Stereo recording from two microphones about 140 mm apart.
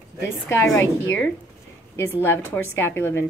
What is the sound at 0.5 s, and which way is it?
Speech, 20° left (ahead or behind).